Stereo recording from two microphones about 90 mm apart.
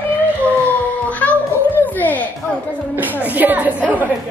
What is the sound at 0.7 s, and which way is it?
Music, 15° left (ahead or behind).